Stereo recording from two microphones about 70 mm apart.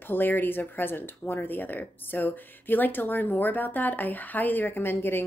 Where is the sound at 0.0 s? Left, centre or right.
Left.